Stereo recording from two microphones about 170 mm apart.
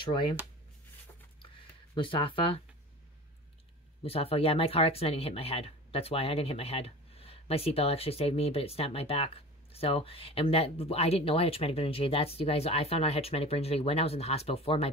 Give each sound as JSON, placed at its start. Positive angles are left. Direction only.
{"t": 0.0, "sound": "speech", "side_deg": 30}
{"t": 1.4, "sound": "a sound", "side_deg": 30}
{"t": 4.0, "sound": "speech", "side_deg": 35}